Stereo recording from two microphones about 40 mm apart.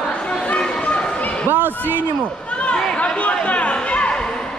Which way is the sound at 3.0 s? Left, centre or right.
Left.